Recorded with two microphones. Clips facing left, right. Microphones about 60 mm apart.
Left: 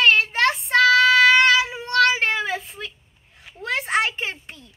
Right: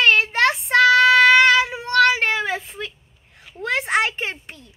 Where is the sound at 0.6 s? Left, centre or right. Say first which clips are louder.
Right 2 dB; right.